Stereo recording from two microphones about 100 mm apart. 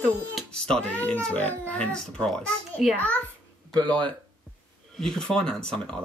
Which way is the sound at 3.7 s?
50° right (ahead or behind).